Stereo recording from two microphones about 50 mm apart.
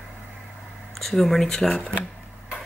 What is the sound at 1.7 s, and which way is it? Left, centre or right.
Speech, left.